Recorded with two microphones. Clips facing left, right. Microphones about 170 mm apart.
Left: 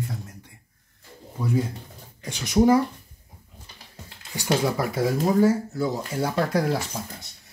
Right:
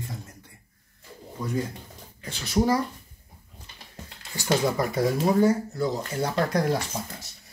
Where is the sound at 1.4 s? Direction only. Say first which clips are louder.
Left 4 dB; 10° left (ahead or behind).